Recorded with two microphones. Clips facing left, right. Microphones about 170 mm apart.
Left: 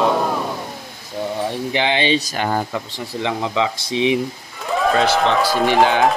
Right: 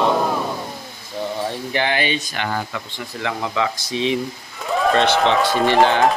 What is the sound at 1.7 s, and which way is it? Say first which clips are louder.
Speech: left 3 dB; 20° left (ahead or behind).